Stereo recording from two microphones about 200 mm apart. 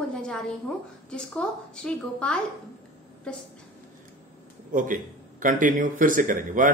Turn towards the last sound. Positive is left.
turn(degrees=-40)  # may be behind; listen again after turning